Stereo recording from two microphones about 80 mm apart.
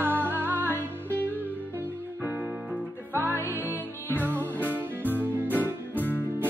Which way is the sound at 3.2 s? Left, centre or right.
Left.